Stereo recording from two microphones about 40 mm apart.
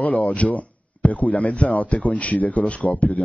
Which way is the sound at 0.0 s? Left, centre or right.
Left.